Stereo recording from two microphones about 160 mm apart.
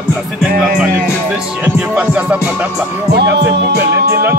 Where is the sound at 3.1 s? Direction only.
90° right.